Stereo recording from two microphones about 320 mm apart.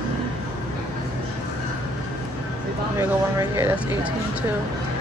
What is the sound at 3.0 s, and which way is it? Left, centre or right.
Speech, centre.